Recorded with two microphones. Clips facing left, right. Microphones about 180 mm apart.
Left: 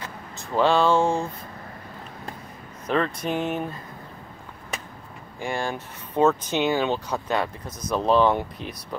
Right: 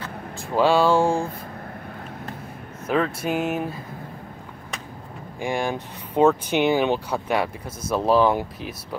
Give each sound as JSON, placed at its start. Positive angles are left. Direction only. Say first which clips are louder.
{"t": 0.6, "sound": "speech", "louder": "right 2 dB", "side_deg": -10}
{"t": 2.9, "sound": "speech", "louder": "right 2 dB", "side_deg": -5}
{"t": 5.4, "sound": "speech", "louder": "right 3 dB", "side_deg": -15}